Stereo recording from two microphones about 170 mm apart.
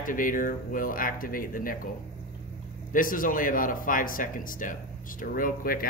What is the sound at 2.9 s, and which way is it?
Speech, 55° left (ahead or behind).